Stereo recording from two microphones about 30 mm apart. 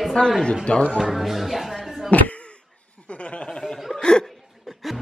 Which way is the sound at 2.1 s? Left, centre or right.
Left.